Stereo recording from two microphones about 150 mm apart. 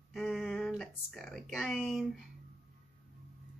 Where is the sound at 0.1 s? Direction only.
Centre (ahead or behind).